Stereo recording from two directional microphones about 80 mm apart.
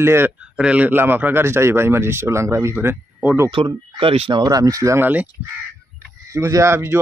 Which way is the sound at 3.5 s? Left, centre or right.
Right.